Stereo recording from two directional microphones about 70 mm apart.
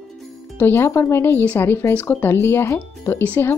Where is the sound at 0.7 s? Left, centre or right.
Left.